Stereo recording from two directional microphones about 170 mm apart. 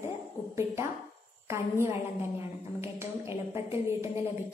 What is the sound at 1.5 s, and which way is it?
A woman's voice, 15° right (ahead or behind).